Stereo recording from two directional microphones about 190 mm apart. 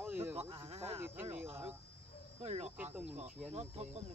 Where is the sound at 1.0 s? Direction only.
10° right (ahead or behind).